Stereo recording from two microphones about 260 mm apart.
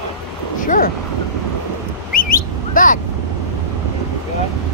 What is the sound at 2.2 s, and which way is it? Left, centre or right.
Bird, left.